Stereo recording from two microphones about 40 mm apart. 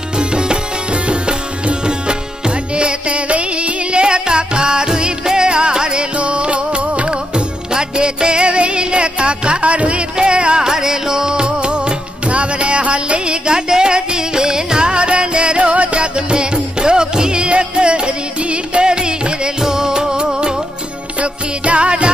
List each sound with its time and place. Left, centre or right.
0.2 s music: right
21.2 s music: right